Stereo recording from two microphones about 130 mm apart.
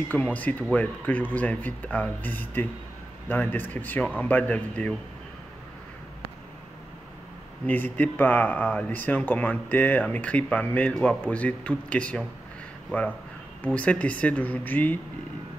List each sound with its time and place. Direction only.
0.1 s speech: 10° left (ahead or behind)
7.6 s speech: 15° left (ahead or behind)
13.7 s speech: 10° left (ahead or behind)